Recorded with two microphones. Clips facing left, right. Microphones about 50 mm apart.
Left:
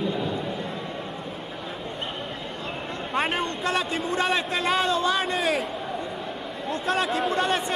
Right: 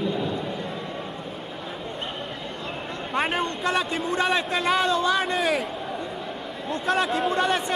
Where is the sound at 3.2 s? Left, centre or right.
Centre.